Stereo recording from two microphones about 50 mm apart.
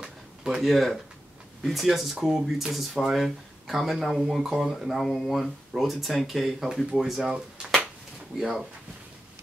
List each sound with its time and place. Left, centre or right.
0.0 s a sound: centre
0.6 s speech: centre
6.9 s speech: centre
8.4 s speech: centre